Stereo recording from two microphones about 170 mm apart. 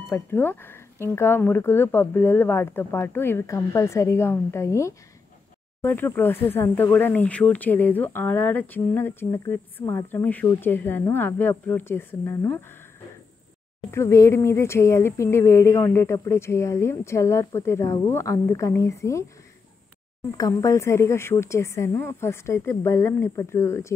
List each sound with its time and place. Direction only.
0.1 s speech: 15° left (ahead or behind)
13.8 s speech: 15° left (ahead or behind)
20.2 s speech: 20° left (ahead or behind)